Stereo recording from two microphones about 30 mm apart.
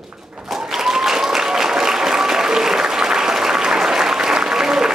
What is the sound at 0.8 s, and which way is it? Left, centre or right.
Applause, centre.